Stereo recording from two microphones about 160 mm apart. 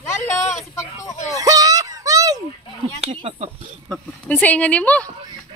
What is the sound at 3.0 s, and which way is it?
Speech, 40° right (ahead or behind).